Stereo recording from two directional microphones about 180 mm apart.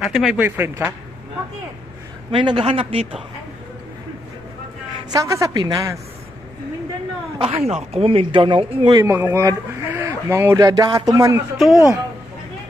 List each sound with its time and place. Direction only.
0.0 s speech: centre (ahead or behind)
0.4 s speech: 10° right (ahead or behind)
2.3 s a woman's voice: 30° right (ahead or behind)
5.1 s a woman's voice: 15° right (ahead or behind)
7.3 s speech: 30° right (ahead or behind)
9.0 s speech: 15° right (ahead or behind)